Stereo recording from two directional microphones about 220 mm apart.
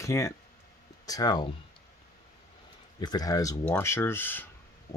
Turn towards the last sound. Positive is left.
turn(degrees=10)  # may be behind; listen again after turning